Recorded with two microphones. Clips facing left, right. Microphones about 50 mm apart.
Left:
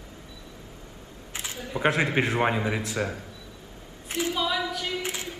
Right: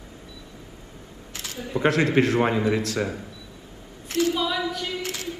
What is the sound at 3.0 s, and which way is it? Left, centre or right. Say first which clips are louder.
Speech: right 2 dB; centre.